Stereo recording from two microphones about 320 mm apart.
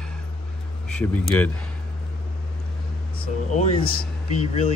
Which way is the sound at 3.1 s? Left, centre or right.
Left.